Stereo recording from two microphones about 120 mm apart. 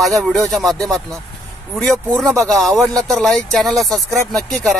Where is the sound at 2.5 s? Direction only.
Centre (ahead or behind).